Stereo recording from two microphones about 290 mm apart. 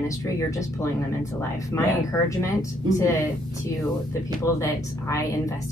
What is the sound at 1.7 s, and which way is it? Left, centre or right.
Speech, centre.